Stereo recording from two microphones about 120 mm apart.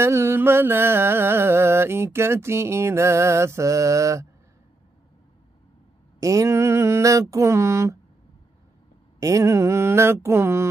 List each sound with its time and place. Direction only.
0.0 s music: 20° right (ahead or behind)
6.1 s music: 25° right (ahead or behind)
9.2 s music: 25° right (ahead or behind)